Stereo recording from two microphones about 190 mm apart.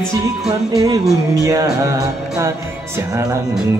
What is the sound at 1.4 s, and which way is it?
Speech, 15° right (ahead or behind).